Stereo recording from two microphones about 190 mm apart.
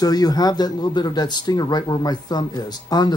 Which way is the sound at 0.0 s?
20° left (ahead or behind).